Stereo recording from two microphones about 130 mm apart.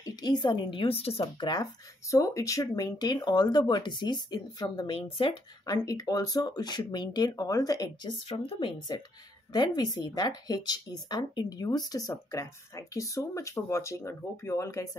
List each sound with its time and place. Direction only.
0.0 s a woman's voice: 30° left (ahead or behind); by 1.2 s 50° left (ahead or behind)
1.2 s speech: 30° left (ahead or behind)
5.2 s speech: 45° left (ahead or behind)
5.7 s speech: 30° left (ahead or behind)
8.3 s speech: 45° left (ahead or behind); by 14.9 s 25° left (ahead or behind)